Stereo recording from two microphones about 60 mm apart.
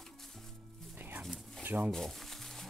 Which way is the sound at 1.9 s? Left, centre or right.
Centre.